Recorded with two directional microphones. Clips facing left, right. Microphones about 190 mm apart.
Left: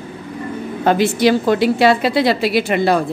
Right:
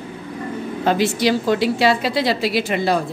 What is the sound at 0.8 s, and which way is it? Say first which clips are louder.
A woman's voice: left 4 dB; 55° left (ahead or behind).